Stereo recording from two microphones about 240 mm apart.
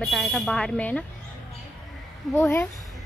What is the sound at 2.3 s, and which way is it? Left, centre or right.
Speech, centre.